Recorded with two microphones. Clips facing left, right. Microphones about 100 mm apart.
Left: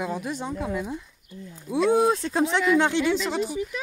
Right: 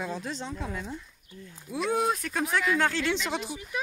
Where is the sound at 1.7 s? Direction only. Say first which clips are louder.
Left 7 dB; 30° left (ahead or behind).